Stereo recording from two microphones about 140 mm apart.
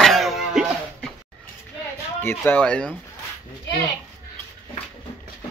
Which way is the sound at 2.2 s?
15° left (ahead or behind).